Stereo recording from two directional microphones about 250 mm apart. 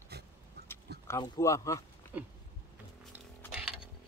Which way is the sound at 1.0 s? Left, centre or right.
Centre.